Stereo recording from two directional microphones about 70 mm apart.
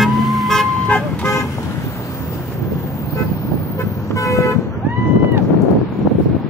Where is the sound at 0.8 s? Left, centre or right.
Centre.